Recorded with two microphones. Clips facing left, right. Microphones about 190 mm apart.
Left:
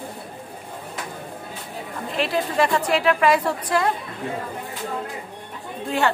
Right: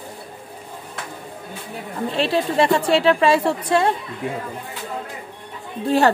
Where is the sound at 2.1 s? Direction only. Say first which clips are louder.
Right 3 dB; 30° right (ahead or behind).